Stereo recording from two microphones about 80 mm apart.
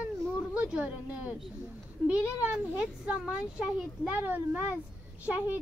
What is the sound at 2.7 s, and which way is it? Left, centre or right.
A child's voice, centre.